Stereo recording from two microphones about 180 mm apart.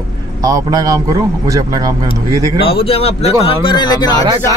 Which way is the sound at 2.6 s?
30° left (ahead or behind).